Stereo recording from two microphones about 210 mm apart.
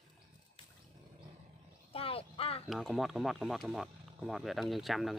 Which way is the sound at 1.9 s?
25° left (ahead or behind).